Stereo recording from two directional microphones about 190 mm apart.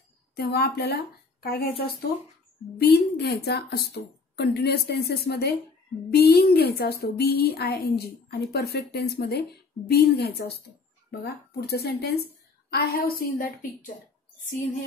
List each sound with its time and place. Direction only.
0.4 s a woman's voice: 55° left (ahead or behind)
2.8 s a woman's voice: 60° left (ahead or behind)